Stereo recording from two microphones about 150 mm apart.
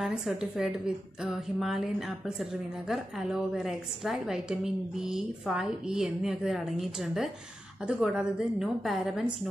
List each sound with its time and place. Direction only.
0.0 s a woman's voice: 5° right (ahead or behind)